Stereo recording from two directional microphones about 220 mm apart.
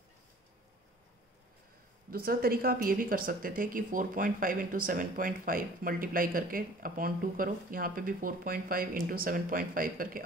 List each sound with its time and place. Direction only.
2.0 s speech: 40° right (ahead or behind)